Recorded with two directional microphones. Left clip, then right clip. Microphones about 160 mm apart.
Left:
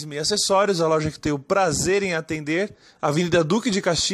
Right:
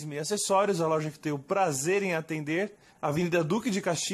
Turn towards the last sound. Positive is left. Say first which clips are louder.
# left 8 dB
turn(degrees=20)  # may be behind; listen again after turning